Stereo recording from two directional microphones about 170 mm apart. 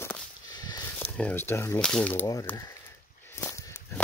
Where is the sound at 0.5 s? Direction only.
25° left (ahead or behind).